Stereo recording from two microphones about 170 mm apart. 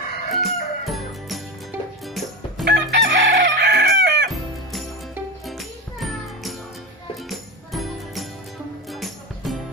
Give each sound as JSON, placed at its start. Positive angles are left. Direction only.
{"t": 0.3, "sound": "music", "side_deg": 0}
{"t": 2.6, "sound": "chicken", "side_deg": -85}
{"t": 4.7, "sound": "music", "side_deg": 0}